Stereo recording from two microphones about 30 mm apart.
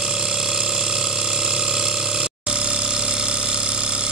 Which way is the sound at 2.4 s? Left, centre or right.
Right.